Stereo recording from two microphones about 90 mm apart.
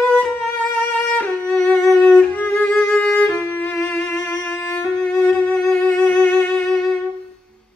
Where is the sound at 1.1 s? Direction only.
15° left (ahead or behind).